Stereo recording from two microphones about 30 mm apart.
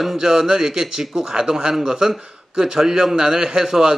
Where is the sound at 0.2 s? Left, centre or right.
Centre.